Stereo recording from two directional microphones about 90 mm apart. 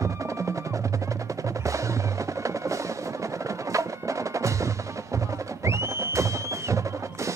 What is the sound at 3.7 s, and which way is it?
Wood block, 35° right (ahead or behind).